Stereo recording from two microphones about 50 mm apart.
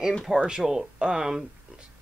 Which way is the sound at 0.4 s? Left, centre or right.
Centre.